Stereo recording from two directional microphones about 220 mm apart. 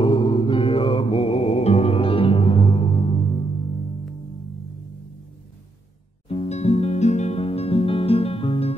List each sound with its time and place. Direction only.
0.0 s music: 25° left (ahead or behind)
6.2 s music: 30° left (ahead or behind)